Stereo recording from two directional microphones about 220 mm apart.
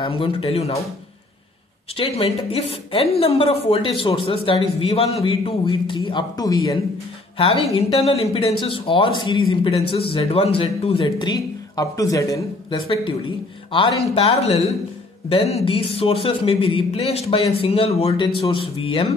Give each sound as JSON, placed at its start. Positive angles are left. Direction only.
{"t": 0.0, "sound": "speech", "side_deg": 25}
{"t": 2.0, "sound": "speech", "side_deg": 25}